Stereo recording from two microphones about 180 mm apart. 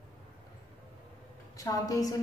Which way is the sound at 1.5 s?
20° left (ahead or behind).